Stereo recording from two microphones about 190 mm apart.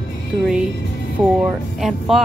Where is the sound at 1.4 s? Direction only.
Centre (ahead or behind).